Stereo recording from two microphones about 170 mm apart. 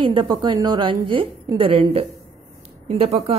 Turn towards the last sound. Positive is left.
turn(degrees=-35)  # may be behind; listen again after turning